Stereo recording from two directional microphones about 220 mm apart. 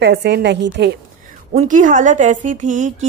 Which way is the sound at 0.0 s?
50° right (ahead or behind).